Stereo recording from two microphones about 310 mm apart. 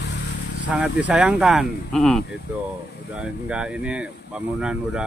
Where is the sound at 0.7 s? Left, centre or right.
Centre.